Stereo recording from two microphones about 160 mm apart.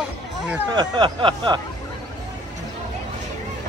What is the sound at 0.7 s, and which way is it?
Speech, 30° right (ahead or behind).